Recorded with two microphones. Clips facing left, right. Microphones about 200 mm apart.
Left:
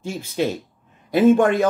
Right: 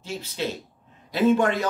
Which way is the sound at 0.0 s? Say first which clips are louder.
Left 6 dB; 50° left (ahead or behind).